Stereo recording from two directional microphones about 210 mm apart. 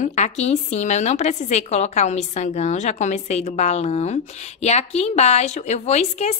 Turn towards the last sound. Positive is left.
turn(degrees=30)  # may be behind; listen again after turning